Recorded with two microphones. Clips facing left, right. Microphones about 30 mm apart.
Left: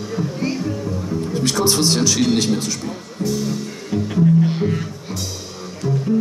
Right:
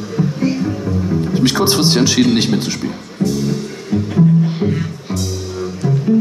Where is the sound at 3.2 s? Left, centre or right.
Centre.